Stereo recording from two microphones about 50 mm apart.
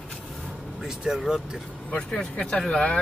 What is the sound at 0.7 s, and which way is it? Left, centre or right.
Speech, centre.